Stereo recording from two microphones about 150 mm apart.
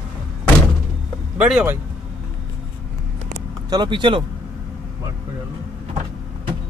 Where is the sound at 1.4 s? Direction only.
10° right (ahead or behind).